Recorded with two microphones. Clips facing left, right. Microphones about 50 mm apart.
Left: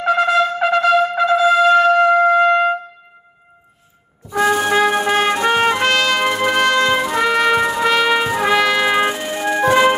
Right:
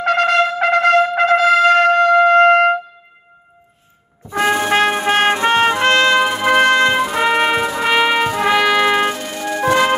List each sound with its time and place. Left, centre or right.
0.0 s trumpet: right
4.3 s brass instrument: right
4.7 s music: right
7.5 s music: centre
8.3 s trumpet: centre
9.1 s music: left